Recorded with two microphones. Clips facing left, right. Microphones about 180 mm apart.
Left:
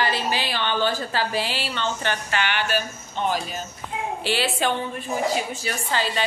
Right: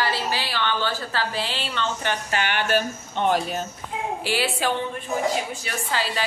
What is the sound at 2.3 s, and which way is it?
Speech, 45° right (ahead or behind).